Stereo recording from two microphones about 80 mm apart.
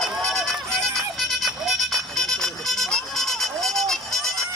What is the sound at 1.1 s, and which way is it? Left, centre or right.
Vehicle, centre.